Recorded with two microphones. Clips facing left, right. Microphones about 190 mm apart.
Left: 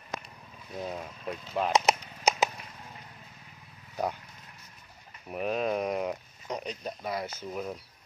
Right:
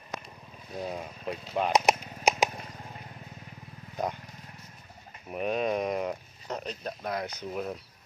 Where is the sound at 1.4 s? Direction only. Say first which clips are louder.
Right 1 dB; 10° right (ahead or behind).